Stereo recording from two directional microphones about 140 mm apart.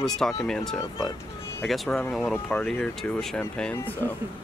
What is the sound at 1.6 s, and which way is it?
Speech, centre (ahead or behind).